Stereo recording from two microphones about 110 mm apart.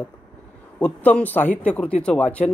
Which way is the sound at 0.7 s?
10° left (ahead or behind).